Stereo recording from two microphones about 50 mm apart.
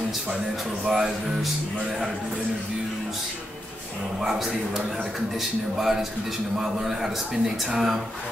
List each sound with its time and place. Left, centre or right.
0.8 s speech: centre
4.2 s speech: centre